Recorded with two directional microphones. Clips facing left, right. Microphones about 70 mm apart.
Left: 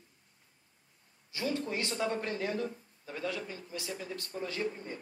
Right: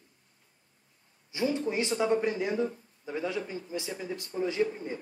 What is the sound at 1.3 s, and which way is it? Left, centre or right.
A man's voice, centre.